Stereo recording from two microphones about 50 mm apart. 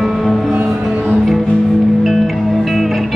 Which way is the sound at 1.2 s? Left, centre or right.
Centre.